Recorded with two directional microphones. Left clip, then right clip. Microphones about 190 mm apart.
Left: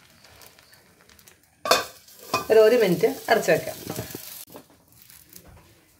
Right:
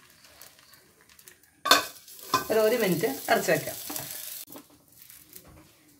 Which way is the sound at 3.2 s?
Centre (ahead or behind).